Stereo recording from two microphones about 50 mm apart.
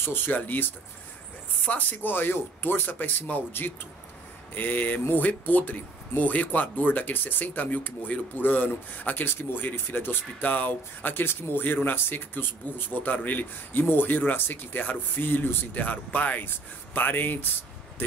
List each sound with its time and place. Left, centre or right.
0.0 s speech: left
10.4 s speech: left